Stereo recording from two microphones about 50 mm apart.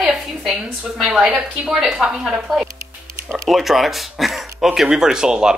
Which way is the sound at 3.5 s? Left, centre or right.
Centre.